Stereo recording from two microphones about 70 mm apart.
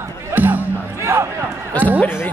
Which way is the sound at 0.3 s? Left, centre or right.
Right.